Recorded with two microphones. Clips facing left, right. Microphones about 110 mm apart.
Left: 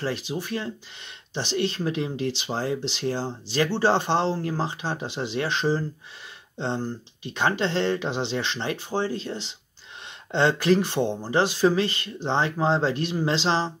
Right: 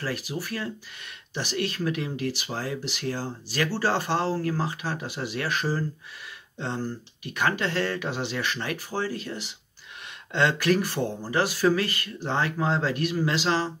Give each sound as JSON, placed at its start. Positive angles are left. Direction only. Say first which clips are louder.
{"t": 0.0, "sound": "speech", "louder": "left 3 dB", "side_deg": 25}